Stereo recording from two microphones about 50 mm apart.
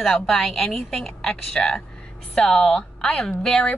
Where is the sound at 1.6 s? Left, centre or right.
Centre.